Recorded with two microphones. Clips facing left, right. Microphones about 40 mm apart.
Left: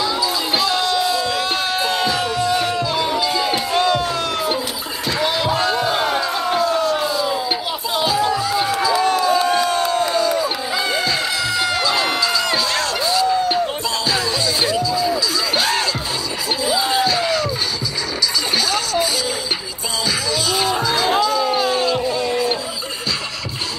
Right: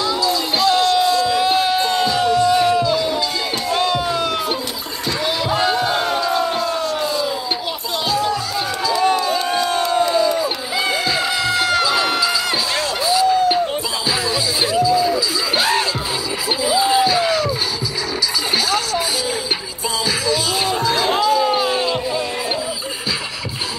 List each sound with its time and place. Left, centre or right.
0.0 s a sound: centre
3.7 s music: centre
5.5 s crowd: centre
8.0 s music: centre
9.1 s crowd: centre
10.8 s crowd: centre
13.0 s a sound: centre
14.6 s music: centre
16.6 s a sound: centre
20.1 s music: centre